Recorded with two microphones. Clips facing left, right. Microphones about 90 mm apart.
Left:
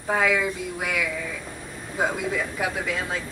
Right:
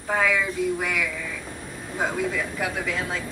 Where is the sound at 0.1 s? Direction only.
5° left (ahead or behind).